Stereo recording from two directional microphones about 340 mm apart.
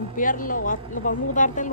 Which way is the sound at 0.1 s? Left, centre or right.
Left.